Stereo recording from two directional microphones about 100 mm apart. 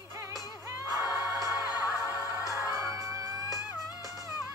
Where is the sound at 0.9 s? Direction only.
25° right (ahead or behind).